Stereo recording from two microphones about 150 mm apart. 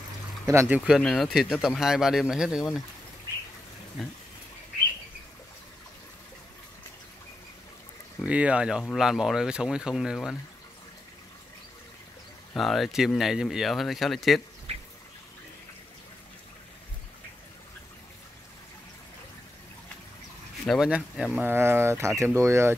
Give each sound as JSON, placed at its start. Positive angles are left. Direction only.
{"t": 0.5, "sound": "speech", "side_deg": -15}
{"t": 4.0, "sound": "speech", "side_deg": 0}
{"t": 8.3, "sound": "speech", "side_deg": -10}
{"t": 12.5, "sound": "speech", "side_deg": 0}
{"t": 14.7, "sound": "duck", "side_deg": -45}
{"t": 20.6, "sound": "speech", "side_deg": 0}